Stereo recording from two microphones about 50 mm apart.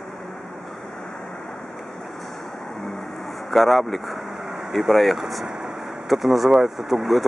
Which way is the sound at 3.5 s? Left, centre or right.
Centre.